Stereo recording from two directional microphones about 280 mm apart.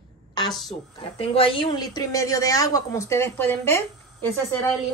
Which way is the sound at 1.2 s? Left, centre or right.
Centre.